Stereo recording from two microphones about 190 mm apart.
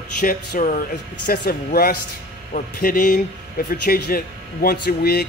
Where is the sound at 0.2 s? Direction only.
45° left (ahead or behind).